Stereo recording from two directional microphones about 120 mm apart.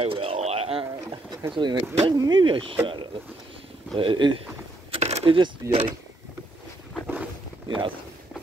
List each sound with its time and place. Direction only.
0.0 s a sound: 50° right (ahead or behind)
1.5 s speech: 40° right (ahead or behind)
5.0 s speech: 55° right (ahead or behind)
7.6 s speech: 45° right (ahead or behind)